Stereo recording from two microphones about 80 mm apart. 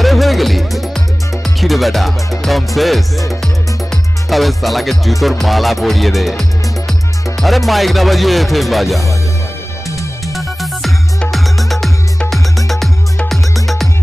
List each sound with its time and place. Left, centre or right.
0.0 s music: centre
2.4 s speech: centre
10.2 s music: centre